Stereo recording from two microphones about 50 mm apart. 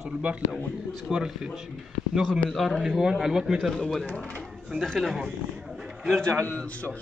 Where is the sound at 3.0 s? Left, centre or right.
Centre.